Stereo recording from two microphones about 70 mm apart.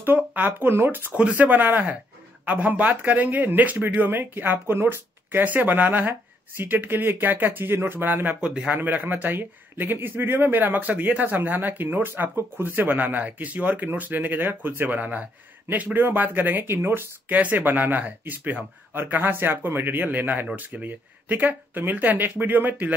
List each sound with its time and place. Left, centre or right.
0.0 s speech: right
8.4 s a man's voice: centre
8.7 s speech: right
17.3 s speech: right